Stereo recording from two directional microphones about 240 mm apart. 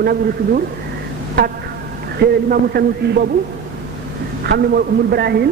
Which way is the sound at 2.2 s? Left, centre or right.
Right.